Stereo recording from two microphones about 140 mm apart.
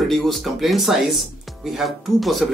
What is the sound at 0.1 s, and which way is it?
Speech, centre (ahead or behind).